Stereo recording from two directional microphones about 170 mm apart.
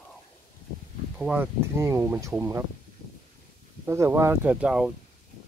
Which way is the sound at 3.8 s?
15° right (ahead or behind).